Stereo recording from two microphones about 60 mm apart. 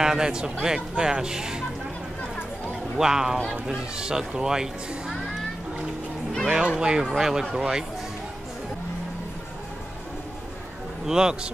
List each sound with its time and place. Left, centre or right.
0.0 s a man's voice: centre
3.0 s a man's voice: centre
6.4 s a man's voice: centre
11.1 s a man's voice: centre